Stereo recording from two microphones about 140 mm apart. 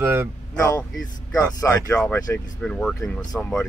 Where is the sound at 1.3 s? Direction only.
25° left (ahead or behind).